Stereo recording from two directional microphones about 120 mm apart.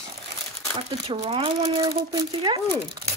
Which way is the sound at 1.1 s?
45° right (ahead or behind).